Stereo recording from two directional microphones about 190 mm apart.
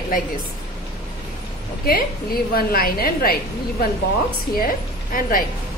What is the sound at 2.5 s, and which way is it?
Speech, 50° left (ahead or behind).